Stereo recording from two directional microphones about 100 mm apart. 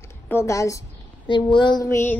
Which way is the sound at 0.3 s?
30° left (ahead or behind).